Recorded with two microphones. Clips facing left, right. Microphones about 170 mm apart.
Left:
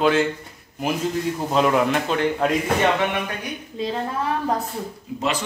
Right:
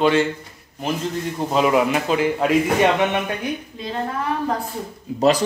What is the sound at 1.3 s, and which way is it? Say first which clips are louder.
Speech: right 3 dB; 5° right (ahead or behind).